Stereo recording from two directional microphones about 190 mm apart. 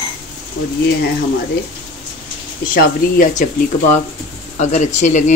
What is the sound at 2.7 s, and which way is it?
Speech, 50° left (ahead or behind).